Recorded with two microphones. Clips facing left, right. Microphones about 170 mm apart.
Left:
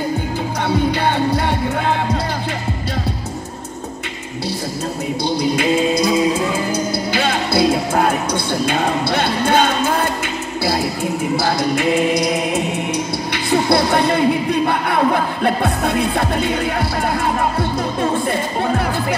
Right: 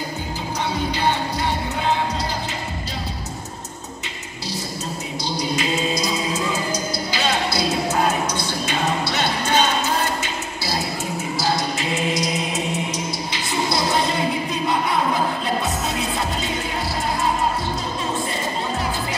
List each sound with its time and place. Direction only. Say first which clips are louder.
1.0 s music: left 5 dB; 55° left (ahead or behind)
5.4 s music: left 6 dB; 55° left (ahead or behind)
11.3 s music: left 4 dB; 55° left (ahead or behind)